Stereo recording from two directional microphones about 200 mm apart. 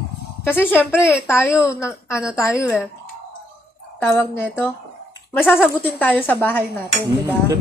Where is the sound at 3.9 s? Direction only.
10° left (ahead or behind).